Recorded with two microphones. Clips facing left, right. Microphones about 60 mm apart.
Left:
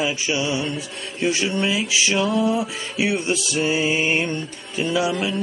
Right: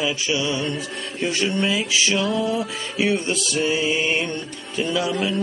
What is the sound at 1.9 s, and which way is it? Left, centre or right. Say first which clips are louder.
Music: left 1 dB; centre.